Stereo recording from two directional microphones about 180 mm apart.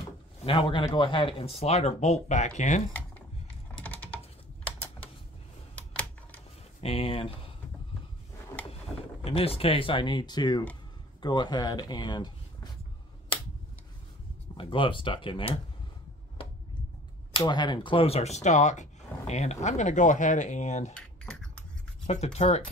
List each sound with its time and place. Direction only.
0.5 s speech: 30° left (ahead or behind)
3.8 s typing: 10° left (ahead or behind)
5.8 s computer keyboard: 10° left (ahead or behind)
6.8 s speech: 30° left (ahead or behind)
9.2 s speech: 35° left (ahead or behind)
14.6 s speech: 30° left (ahead or behind)
17.4 s speech: 25° left (ahead or behind); by 20.9 s 40° left (ahead or behind)
20.9 s typing: 5° left (ahead or behind)
22.0 s speech: 40° left (ahead or behind)